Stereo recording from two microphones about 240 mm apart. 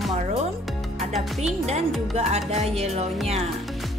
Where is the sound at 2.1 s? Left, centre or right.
Right.